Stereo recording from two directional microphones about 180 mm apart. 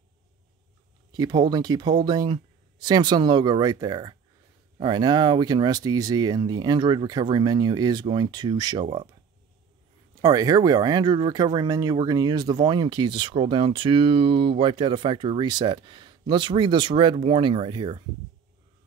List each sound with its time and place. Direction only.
1.1 s speech: 20° right (ahead or behind)
10.2 s speech: 20° right (ahead or behind)